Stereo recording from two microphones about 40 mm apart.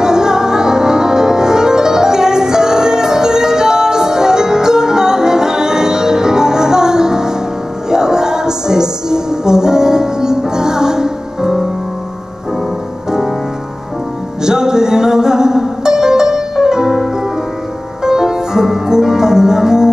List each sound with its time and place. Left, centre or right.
0.0 s music: centre
14.4 s music: centre